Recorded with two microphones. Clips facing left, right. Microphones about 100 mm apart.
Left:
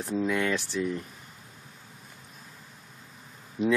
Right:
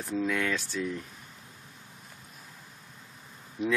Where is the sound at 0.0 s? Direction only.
20° left (ahead or behind).